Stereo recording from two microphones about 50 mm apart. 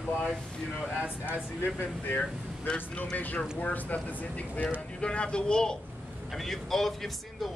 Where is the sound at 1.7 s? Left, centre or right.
Left; by 5.7 s centre.